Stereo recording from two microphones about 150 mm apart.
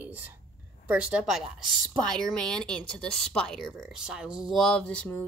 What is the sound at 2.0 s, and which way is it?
Speech, 5° left (ahead or behind).